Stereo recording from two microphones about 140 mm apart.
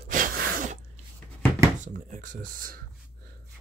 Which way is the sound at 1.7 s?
65° right (ahead or behind).